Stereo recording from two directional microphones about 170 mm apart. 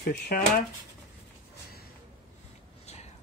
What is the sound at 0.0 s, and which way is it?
Speech, 60° left (ahead or behind).